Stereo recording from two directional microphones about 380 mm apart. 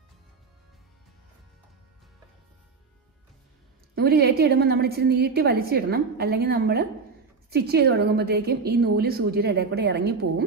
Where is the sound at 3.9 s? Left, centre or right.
Right.